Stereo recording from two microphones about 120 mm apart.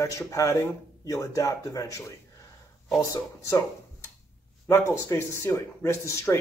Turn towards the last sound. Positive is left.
turn(degrees=25)  # may be behind; listen again after turning